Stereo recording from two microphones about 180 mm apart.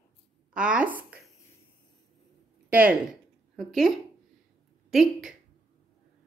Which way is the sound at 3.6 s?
Centre (ahead or behind).